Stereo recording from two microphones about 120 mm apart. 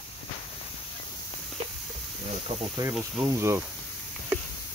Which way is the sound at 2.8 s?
30° right (ahead or behind).